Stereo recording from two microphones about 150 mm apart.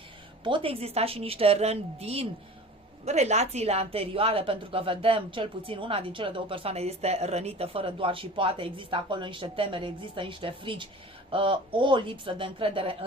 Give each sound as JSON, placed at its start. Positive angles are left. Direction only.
{"t": 0.4, "sound": "a woman's voice", "side_deg": -35}